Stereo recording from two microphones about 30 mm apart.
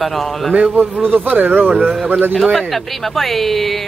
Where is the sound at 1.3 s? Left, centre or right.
Right.